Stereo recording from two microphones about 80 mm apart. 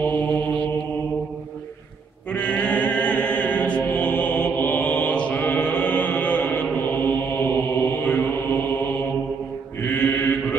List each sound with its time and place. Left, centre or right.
0.0 s mantra: centre
2.3 s chant: centre
7.9 s mantra: left